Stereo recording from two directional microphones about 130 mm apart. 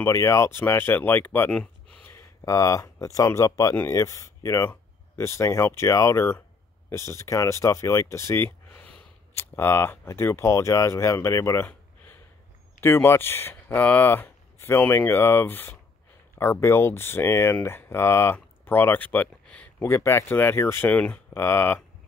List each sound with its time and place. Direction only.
0.0 s speech: 20° left (ahead or behind)
1.6 s a sound: 10° left (ahead or behind)
2.1 s speech: 25° left (ahead or behind)